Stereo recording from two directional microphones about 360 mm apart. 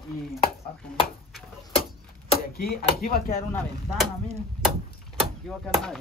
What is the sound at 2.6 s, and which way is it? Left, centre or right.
Speech, left.